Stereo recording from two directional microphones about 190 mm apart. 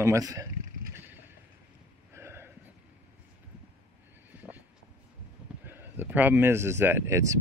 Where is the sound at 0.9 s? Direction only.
10° right (ahead or behind).